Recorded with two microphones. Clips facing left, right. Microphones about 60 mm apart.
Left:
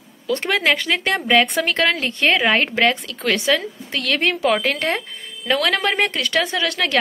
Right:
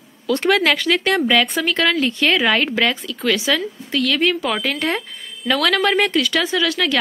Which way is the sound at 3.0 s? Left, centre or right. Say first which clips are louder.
Right 1 dB; left.